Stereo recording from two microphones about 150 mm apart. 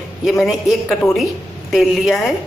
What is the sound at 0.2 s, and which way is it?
Speech, centre (ahead or behind).